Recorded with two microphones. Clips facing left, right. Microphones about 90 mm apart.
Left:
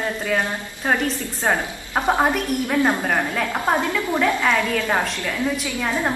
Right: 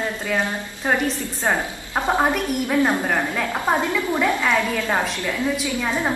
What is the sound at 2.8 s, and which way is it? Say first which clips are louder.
Speech: left 1 dB; 15° left (ahead or behind).